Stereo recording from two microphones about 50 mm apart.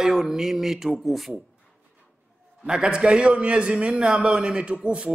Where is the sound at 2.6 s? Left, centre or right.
Centre.